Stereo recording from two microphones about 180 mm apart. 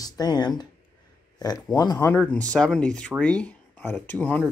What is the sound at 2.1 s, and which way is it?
Speech, 5° left (ahead or behind).